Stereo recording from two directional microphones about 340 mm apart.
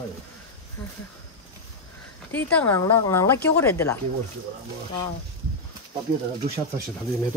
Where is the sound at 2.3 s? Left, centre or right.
Centre.